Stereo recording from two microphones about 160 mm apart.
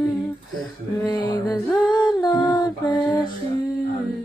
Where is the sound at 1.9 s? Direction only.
25° left (ahead or behind).